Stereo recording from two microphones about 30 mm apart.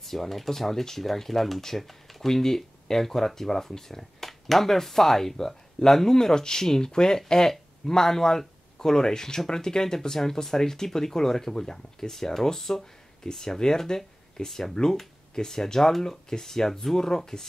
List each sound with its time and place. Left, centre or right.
0.0 s speech: centre